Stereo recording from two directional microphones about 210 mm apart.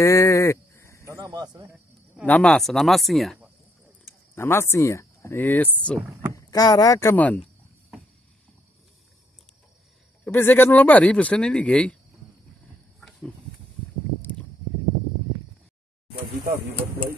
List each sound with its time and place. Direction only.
0.0 s sheep: 15° left (ahead or behind)
1.0 s a sound: 15° right (ahead or behind)
2.2 s speech: 5° left (ahead or behind)
4.4 s speech: 10° left (ahead or behind)
6.3 s speech: 15° left (ahead or behind)
10.2 s speech: 10° left (ahead or behind)